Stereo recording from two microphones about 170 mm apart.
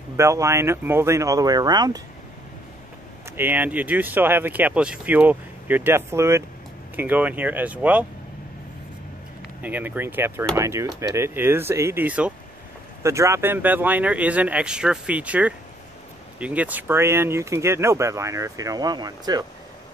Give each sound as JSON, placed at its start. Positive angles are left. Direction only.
{"t": 0.2, "sound": "speech", "side_deg": -15}
{"t": 3.3, "sound": "speech", "side_deg": -10}
{"t": 9.6, "sound": "speech", "side_deg": -10}